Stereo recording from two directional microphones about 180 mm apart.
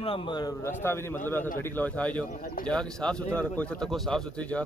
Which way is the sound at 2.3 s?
50° left (ahead or behind).